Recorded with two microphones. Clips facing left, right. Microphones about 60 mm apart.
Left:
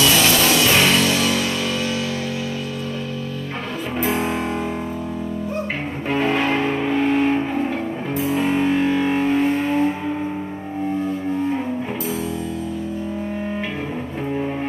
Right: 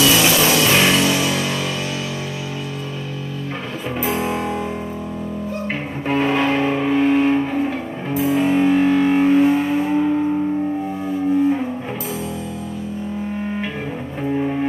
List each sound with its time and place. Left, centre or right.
0.0 s music: centre
4.0 s music: centre
6.0 s music: centre